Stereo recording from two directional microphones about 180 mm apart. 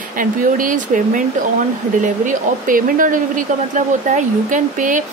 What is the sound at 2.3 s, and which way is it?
Speech, 50° right (ahead or behind).